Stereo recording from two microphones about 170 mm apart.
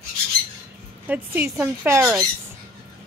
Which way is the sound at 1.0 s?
10° right (ahead or behind).